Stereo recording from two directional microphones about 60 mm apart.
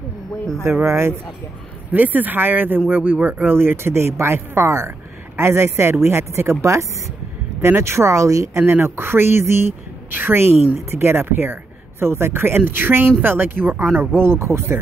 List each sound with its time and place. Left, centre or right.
0.8 s a woman's voice: right
1.9 s speech: right
3.5 s a woman's voice: right
8.6 s a woman's voice: right